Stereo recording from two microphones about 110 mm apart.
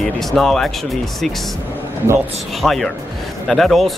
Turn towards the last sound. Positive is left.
turn(degrees=0)  # may be behind; listen again after turning